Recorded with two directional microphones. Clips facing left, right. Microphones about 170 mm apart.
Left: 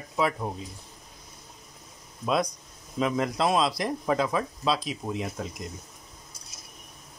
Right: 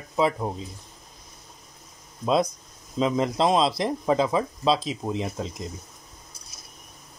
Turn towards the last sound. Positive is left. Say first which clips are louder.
# right 3 dB
turn(degrees=-25)  # may be behind; listen again after turning